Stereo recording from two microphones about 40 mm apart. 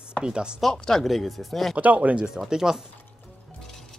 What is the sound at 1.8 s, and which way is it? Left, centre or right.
Speech, right.